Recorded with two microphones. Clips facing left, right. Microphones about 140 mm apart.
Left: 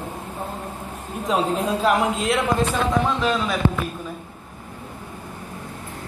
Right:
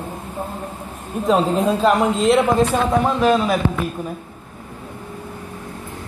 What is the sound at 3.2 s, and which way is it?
Speech, 45° right (ahead or behind).